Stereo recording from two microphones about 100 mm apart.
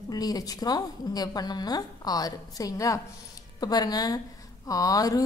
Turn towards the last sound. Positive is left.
turn(degrees=35)  # may be behind; listen again after turning